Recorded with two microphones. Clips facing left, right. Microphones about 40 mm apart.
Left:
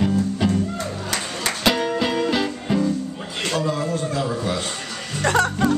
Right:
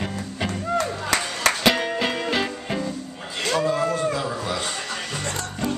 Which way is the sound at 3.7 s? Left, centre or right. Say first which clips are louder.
Right 2 dB; right.